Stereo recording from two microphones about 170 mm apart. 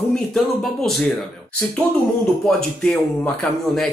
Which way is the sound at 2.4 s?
5° left (ahead or behind).